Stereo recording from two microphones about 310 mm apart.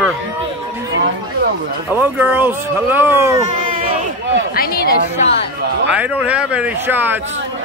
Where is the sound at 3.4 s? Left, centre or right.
Right.